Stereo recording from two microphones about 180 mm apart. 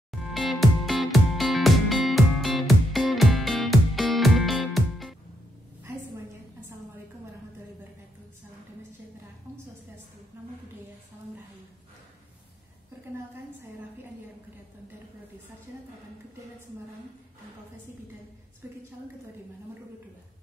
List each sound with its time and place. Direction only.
0.2 s music: centre (ahead or behind)